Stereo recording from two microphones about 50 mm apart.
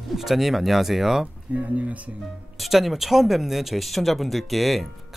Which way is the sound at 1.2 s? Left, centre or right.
Right.